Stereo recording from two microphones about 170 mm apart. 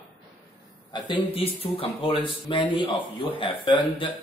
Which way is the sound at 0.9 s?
30° left (ahead or behind).